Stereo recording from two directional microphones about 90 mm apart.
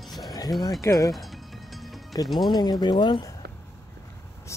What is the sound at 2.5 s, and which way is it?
Speech, 50° left (ahead or behind).